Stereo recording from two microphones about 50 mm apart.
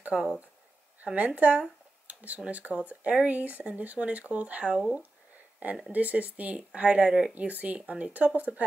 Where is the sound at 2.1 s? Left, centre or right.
Right.